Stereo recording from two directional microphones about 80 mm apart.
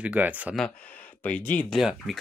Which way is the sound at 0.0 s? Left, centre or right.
Centre.